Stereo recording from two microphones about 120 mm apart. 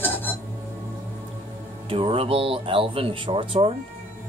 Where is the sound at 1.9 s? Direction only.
50° right (ahead or behind).